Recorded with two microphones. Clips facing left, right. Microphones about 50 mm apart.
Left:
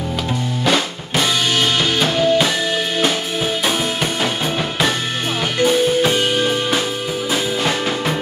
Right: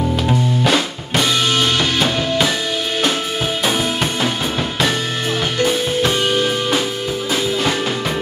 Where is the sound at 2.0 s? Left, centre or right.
Centre.